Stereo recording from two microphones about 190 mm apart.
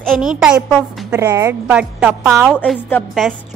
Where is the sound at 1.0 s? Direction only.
15° right (ahead or behind).